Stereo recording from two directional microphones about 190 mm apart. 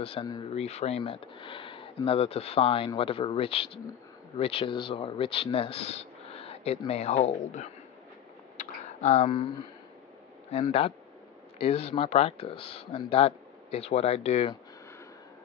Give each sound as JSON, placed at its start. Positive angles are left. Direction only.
{"t": 0.0, "sound": "speech", "side_deg": 25}
{"t": 8.5, "sound": "a sound", "side_deg": 35}
{"t": 10.5, "sound": "speech", "side_deg": 35}